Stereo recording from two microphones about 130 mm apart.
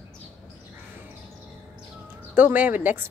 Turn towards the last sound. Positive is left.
turn(degrees=-15)  # may be behind; listen again after turning